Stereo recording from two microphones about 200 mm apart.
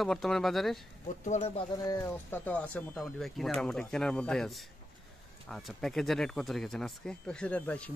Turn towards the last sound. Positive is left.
turn(degrees=5)  # may be behind; listen again after turning